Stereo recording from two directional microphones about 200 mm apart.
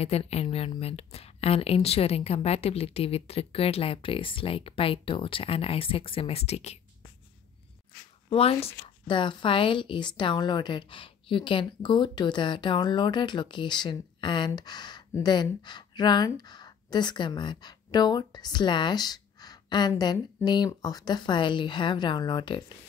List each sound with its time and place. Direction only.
0.0 s a woman's voice: 30° left (ahead or behind)
8.3 s a woman's voice: 30° left (ahead or behind)